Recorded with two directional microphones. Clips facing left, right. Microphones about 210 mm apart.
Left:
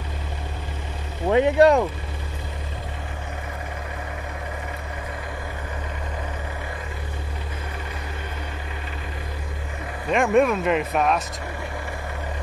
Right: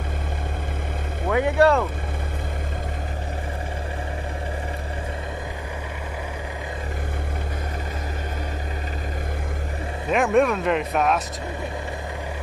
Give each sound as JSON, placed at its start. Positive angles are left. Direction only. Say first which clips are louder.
{"t": 1.3, "sound": "speech", "louder": "left 3 dB", "side_deg": 20}
{"t": 10.0, "sound": "speech", "louder": "even", "side_deg": 0}